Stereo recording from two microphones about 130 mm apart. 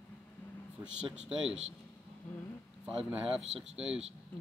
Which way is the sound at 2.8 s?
5° right (ahead or behind).